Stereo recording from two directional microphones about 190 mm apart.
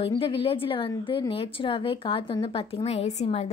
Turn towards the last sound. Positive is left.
turn(degrees=35)  # may be behind; listen again after turning